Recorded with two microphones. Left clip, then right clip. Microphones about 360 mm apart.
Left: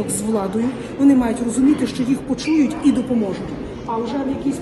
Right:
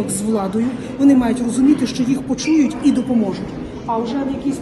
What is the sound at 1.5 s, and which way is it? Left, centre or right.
Speech, right.